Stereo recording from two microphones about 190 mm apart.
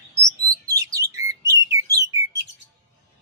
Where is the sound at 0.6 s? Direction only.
15° right (ahead or behind).